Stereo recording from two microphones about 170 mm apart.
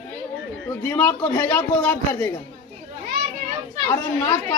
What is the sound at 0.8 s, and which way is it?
Speech, 10° left (ahead or behind).